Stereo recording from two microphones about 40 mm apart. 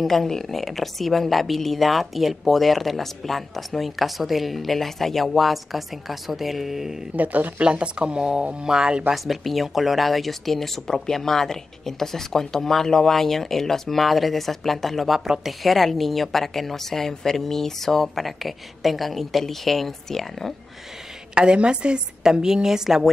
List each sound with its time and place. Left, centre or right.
0.0 s speech: centre
7.2 s speech: right
7.6 s speech: right
9.1 s speech: centre
21.4 s a woman's voice: right